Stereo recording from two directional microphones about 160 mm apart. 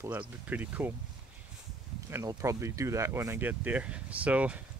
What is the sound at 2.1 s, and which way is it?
Speech, 20° right (ahead or behind).